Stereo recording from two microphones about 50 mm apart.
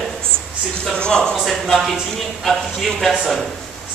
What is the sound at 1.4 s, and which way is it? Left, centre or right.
A man's voice, centre.